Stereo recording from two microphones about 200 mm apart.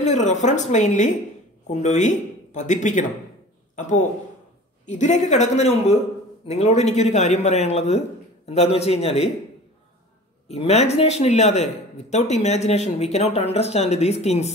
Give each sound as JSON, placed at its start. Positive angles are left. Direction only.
{"t": 0.0, "sound": "speech", "side_deg": 35}
{"t": 10.5, "sound": "speech", "side_deg": 30}